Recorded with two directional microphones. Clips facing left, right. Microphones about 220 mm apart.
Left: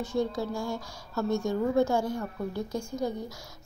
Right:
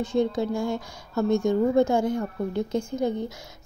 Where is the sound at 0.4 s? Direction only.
20° right (ahead or behind).